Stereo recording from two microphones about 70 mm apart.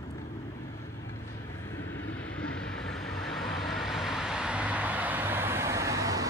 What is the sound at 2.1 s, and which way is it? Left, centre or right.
Vehicle, centre.